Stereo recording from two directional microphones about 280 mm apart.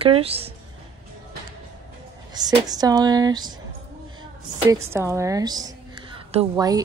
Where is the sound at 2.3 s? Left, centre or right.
Centre.